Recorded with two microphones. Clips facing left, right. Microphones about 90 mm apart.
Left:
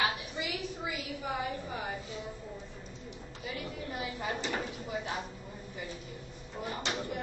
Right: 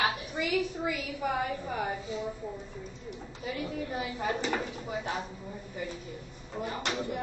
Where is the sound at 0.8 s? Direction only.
55° right (ahead or behind).